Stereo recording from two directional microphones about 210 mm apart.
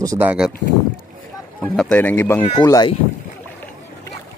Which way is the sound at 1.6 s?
5° left (ahead or behind).